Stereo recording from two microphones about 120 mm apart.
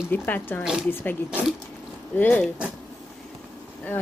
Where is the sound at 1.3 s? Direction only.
10° right (ahead or behind).